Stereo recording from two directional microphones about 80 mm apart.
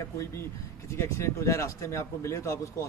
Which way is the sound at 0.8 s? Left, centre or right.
Left.